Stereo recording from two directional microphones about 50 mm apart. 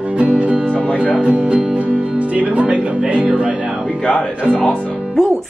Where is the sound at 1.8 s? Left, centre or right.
Right.